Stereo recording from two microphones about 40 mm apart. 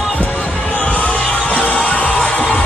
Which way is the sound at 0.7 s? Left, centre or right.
Left.